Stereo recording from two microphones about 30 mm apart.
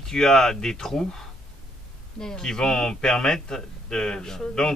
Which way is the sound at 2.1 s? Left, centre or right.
Left.